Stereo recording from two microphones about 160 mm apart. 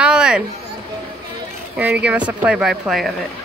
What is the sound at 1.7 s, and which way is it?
Speech, 10° right (ahead or behind).